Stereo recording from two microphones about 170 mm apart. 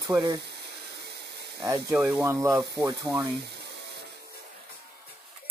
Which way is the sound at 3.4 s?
80° right.